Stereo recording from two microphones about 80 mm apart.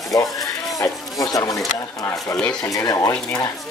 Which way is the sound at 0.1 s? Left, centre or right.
Left.